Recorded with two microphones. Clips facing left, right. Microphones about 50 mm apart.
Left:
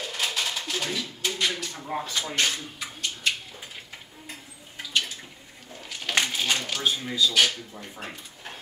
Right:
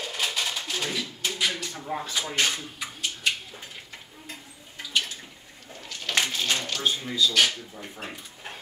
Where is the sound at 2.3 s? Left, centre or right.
Centre.